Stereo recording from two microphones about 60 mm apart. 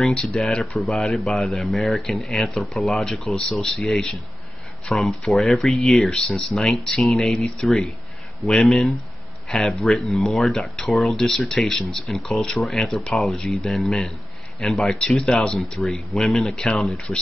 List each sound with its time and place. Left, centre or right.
0.4 s speech: centre
15.1 s speech: centre
15.9 s speech: centre
16.9 s speech: left